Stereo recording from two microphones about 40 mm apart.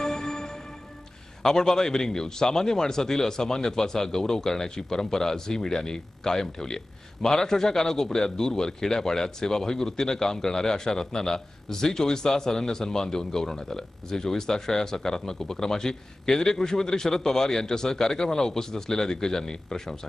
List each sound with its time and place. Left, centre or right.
0.0 s music: centre
1.4 s a man's voice: centre